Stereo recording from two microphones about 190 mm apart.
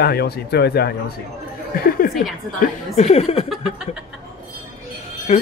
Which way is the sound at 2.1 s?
Centre (ahead or behind).